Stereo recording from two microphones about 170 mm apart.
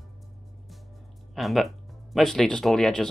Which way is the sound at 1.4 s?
Centre (ahead or behind).